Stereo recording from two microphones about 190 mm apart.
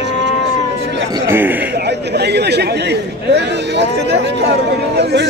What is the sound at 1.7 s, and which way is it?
Speech, 60° right (ahead or behind).